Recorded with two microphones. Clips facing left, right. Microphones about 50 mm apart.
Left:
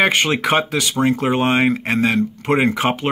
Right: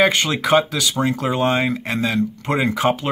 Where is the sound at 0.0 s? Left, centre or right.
Left.